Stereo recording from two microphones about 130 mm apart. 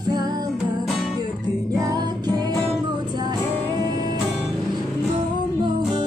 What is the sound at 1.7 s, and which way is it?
Music, 30° right (ahead or behind).